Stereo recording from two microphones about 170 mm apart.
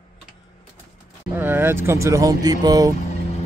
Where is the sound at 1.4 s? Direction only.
10° right (ahead or behind).